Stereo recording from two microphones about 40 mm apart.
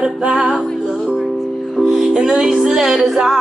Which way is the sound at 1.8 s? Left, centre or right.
Centre.